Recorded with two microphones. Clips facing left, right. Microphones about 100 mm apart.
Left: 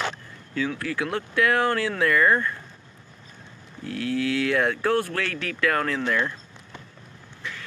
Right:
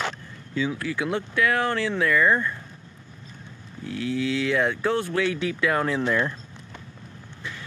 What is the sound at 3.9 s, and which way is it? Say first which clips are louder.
Speech: left 1 dB; 15° right (ahead or behind).